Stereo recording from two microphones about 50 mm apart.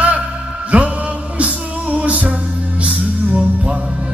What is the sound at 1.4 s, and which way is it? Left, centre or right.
Music, right.